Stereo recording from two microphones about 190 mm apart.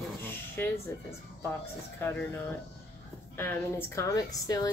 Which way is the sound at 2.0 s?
10° left (ahead or behind).